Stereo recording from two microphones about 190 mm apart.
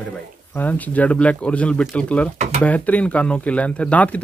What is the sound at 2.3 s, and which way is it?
Speech, 40° right (ahead or behind).